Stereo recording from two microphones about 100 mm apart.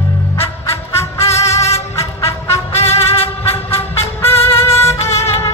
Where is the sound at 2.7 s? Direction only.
90° left.